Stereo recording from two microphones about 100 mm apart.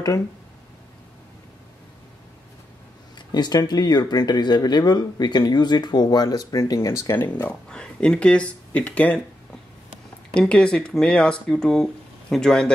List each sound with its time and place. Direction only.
3.3 s speech: 45° left (ahead or behind); by 7.2 s 25° left (ahead or behind)
7.4 s speech: 10° left (ahead or behind)
10.3 s speech: 10° left (ahead or behind)